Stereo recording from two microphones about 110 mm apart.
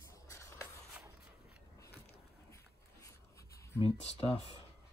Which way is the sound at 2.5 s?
30° left (ahead or behind).